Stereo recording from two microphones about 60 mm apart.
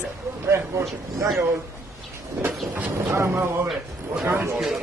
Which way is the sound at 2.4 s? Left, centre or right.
Right.